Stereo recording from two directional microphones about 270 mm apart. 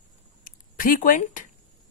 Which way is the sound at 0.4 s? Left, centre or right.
Left.